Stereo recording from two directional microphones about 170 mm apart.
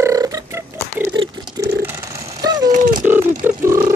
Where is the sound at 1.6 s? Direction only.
20° right (ahead or behind).